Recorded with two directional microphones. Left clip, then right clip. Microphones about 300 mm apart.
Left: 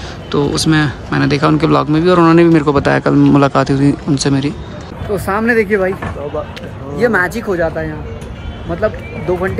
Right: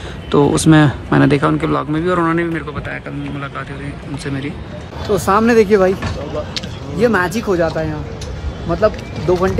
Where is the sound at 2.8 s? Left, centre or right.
Left.